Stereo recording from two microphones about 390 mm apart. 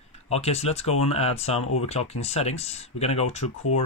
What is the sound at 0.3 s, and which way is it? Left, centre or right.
Speech, centre.